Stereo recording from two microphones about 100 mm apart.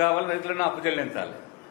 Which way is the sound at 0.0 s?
20° left (ahead or behind).